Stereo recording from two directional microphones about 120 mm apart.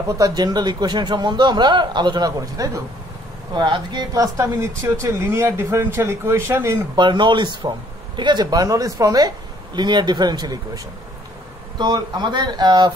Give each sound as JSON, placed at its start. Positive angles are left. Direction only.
{"t": 0.2, "sound": "a man's voice", "side_deg": -35}
{"t": 3.5, "sound": "speech", "side_deg": -40}
{"t": 7.0, "sound": "a man's voice", "side_deg": -40}
{"t": 11.8, "sound": "a man's voice", "side_deg": -35}